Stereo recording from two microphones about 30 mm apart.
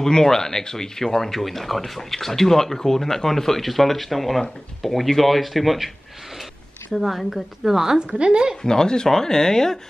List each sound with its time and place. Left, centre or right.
0.0 s speech: centre
6.9 s a woman's voice: centre
8.1 s a woman's voice: right
8.6 s speech: left